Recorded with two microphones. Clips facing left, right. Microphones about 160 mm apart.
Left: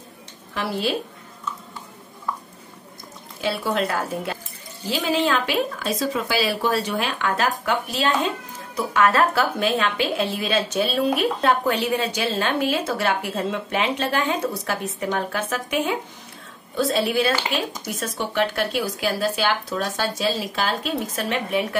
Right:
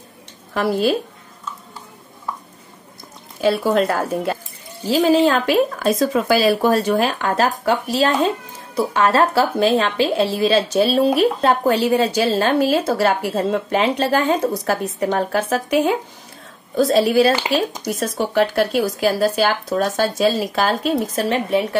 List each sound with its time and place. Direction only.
0.6 s speech: 45° right (ahead or behind)
3.3 s a woman's voice: 45° right (ahead or behind)